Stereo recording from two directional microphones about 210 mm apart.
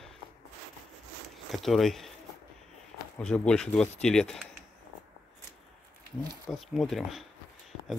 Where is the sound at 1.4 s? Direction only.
Centre (ahead or behind).